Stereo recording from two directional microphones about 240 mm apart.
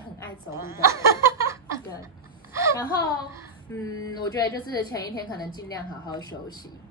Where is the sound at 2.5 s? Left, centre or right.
Centre.